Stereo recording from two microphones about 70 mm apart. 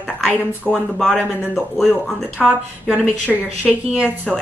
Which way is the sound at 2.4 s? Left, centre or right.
Centre.